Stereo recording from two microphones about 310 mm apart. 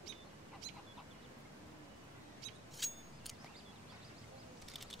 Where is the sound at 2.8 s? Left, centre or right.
Centre.